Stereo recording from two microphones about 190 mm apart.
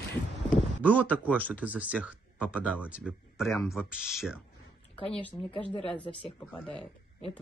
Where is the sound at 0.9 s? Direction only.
10° right (ahead or behind).